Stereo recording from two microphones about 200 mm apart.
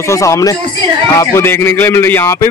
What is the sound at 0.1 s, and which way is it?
Speech, 15° left (ahead or behind).